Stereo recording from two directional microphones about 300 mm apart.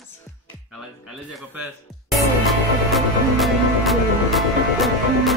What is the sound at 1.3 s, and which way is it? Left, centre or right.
Music, centre.